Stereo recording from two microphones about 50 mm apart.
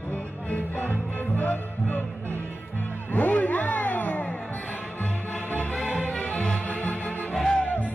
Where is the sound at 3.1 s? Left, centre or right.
Left.